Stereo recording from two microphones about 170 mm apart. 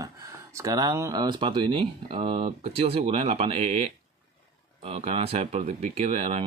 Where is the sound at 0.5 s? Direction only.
20° right (ahead or behind).